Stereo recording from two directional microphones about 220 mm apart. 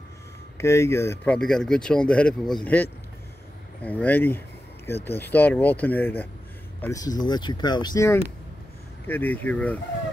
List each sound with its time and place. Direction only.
0.6 s speech: 10° left (ahead or behind)